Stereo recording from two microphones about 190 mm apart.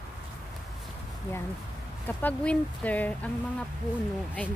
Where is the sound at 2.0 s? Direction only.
5° left (ahead or behind).